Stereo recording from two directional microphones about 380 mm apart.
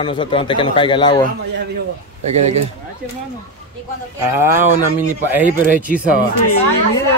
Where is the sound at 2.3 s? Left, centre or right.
Centre.